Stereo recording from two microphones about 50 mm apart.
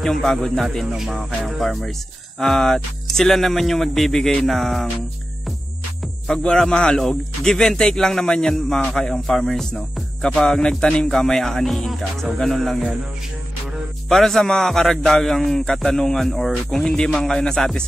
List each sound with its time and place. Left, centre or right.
0.0 s speech: centre
6.2 s a man's voice: centre
11.1 s speech: centre
14.0 s a man's voice: centre
16.9 s a man's voice: centre